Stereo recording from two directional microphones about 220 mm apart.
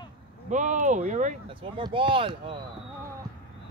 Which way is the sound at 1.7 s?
25° right (ahead or behind).